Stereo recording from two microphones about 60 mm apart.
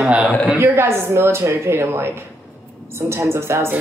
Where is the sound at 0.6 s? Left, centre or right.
Right.